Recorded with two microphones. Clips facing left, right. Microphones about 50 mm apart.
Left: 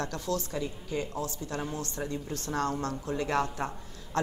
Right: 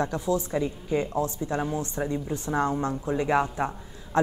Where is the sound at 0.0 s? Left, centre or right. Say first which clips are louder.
Right 6 dB; centre.